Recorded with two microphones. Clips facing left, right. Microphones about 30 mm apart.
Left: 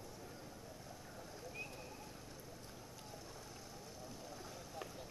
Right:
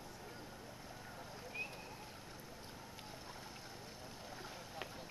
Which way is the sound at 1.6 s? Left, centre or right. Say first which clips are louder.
Right 5 dB; right.